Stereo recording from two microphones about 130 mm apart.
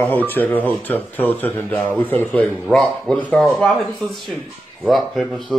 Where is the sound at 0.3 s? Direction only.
15° left (ahead or behind).